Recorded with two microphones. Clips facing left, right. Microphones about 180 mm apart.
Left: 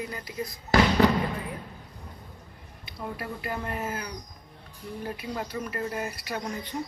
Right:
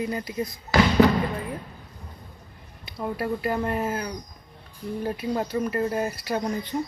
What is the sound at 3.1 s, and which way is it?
Speech, 40° right (ahead or behind).